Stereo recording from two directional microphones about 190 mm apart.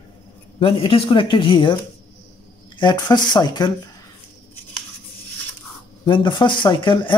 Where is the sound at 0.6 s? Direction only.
30° left (ahead or behind).